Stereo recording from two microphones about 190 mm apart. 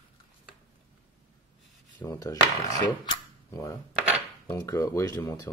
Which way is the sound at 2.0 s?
15° left (ahead or behind).